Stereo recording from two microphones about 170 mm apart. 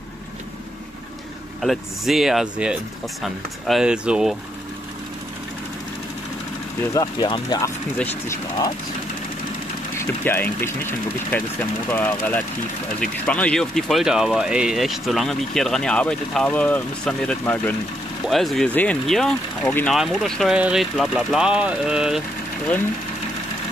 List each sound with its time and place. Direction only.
1.6 s speech: centre (ahead or behind)
6.9 s speech: 25° left (ahead or behind)
9.9 s speech: 10° left (ahead or behind); by 22.2 s 5° right (ahead or behind)